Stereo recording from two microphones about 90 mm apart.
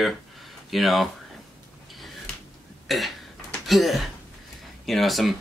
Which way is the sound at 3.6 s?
Centre (ahead or behind).